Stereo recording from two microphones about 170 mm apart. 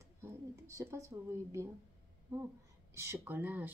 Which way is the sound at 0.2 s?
15° right (ahead or behind).